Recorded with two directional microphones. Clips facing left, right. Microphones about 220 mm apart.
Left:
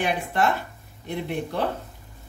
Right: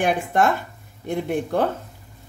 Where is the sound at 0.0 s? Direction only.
50° right (ahead or behind).